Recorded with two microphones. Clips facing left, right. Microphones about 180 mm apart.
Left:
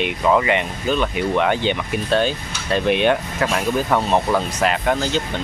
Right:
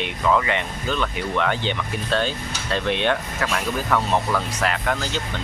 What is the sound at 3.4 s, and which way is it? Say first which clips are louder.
Speech: left 5 dB; 25° left (ahead or behind).